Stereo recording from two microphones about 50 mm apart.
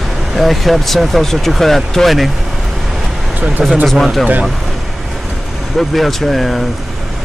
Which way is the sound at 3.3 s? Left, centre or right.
Right.